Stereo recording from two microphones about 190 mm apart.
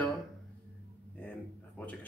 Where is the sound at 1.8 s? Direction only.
10° left (ahead or behind).